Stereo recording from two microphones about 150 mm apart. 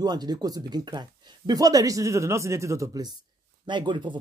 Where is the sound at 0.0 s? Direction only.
25° right (ahead or behind).